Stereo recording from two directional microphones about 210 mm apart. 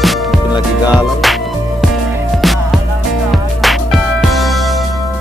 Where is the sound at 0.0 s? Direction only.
Centre (ahead or behind).